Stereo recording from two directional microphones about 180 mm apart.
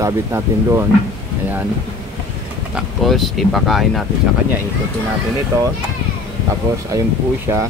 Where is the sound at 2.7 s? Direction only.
Centre (ahead or behind).